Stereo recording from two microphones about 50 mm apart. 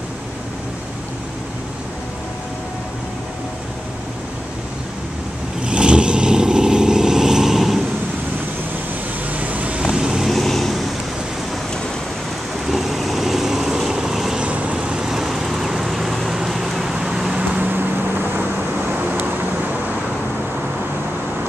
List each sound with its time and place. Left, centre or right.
5.6 s vehicle: centre
9.3 s vehicle: right
9.8 s vehicle: centre
10.2 s vehicle: centre
12.6 s vehicle: centre
14.4 s vehicle: right
17.4 s vehicle: right